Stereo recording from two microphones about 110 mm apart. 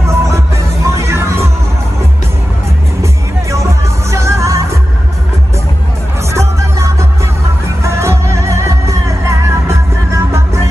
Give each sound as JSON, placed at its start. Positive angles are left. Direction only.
{"t": 0.0, "sound": "music", "side_deg": -25}
{"t": 4.1, "sound": "music", "side_deg": -25}
{"t": 6.3, "sound": "music", "side_deg": -25}